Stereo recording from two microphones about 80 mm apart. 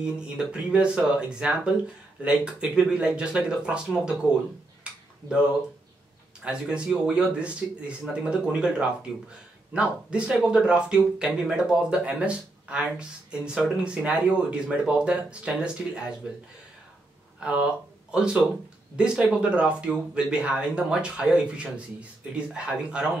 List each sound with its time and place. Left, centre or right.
0.0 s speech: centre
4.9 s tick-tock: centre
6.4 s speech: centre
13.8 s speech: centre
17.4 s speech: centre